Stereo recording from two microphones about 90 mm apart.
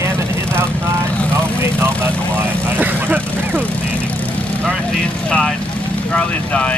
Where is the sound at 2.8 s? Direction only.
20° right (ahead or behind).